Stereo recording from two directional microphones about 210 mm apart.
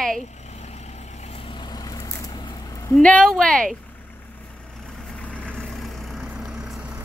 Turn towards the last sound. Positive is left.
turn(degrees=-5)  # may be behind; listen again after turning